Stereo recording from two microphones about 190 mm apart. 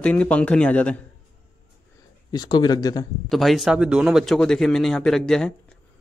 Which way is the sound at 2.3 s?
20° left (ahead or behind).